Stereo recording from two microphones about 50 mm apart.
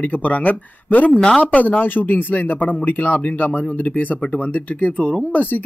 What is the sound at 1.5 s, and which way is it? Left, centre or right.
Speech, left.